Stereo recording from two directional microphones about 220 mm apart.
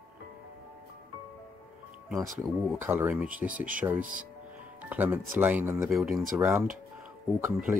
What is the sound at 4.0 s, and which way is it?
Speech, 35° right (ahead or behind).